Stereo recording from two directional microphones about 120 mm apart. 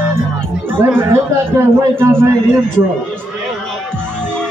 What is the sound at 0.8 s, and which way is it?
A man's voice, 20° right (ahead or behind).